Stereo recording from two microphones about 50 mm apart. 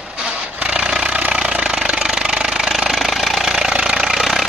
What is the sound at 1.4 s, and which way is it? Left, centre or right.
Jackhammer, centre.